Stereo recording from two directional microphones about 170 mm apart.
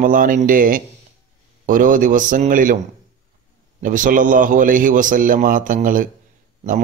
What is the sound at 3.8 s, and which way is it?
A man's voice, 50° right (ahead or behind).